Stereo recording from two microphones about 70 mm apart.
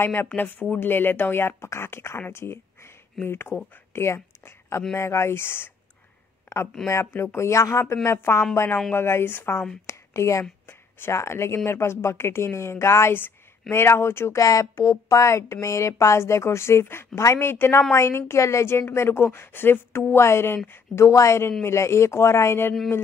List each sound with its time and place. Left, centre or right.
0.0 s a woman's voice: left
3.9 s a sound: left
4.9 s a woman's voice: left
6.5 s a sound: left
6.9 s a woman's voice: left
9.8 s a woman's voice: left
14.4 s a woman's voice: left
20.9 s a woman's voice: left